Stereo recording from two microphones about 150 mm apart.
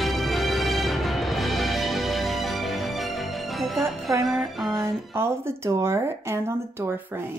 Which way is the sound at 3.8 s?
20° right (ahead or behind).